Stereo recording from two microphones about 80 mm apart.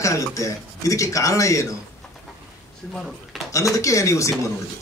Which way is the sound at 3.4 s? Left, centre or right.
Left.